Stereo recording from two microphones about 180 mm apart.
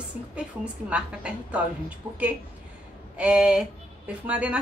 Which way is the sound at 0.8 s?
5° right (ahead or behind).